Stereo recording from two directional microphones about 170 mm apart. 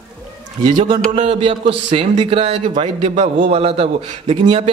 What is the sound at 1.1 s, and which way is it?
A man's voice, 40° right (ahead or behind).